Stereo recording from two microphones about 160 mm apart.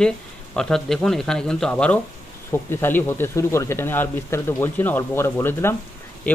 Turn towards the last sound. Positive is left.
turn(degrees=15)  # may be behind; listen again after turning